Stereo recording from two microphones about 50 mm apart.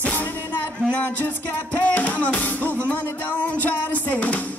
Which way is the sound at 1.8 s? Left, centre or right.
Left.